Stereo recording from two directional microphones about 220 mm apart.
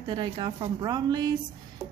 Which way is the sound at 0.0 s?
20° right (ahead or behind).